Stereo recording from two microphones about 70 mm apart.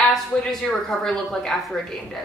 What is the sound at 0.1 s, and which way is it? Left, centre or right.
Speech, centre.